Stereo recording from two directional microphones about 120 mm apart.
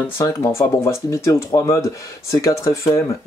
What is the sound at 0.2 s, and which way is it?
Speech, 25° left (ahead or behind).